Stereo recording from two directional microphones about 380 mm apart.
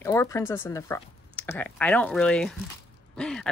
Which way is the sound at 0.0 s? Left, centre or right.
Centre.